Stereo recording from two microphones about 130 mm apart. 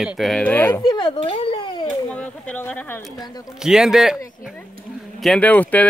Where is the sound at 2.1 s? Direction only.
10° left (ahead or behind).